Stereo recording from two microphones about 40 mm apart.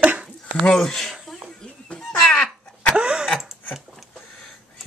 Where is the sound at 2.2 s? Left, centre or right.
Left.